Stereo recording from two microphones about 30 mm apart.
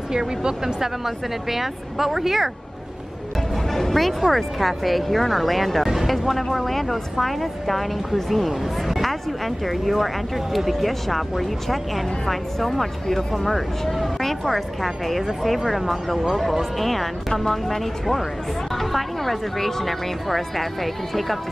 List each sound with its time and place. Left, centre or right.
0.1 s speech: right
0.7 s a woman's voice: centre
3.7 s music: centre
4.2 s speech: centre